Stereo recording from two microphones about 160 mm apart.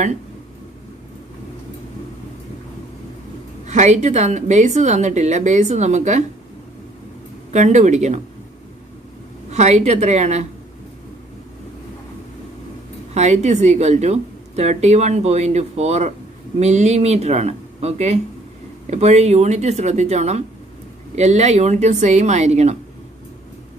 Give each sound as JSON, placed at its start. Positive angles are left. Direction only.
{"t": 3.6, "sound": "a woman's voice", "side_deg": -45}
{"t": 7.5, "sound": "a woman's voice", "side_deg": -50}
{"t": 9.5, "sound": "a woman's voice", "side_deg": -45}
{"t": 13.1, "sound": "a woman's voice", "side_deg": -45}